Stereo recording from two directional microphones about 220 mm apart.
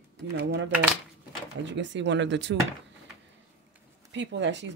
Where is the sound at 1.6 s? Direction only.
55° right (ahead or behind).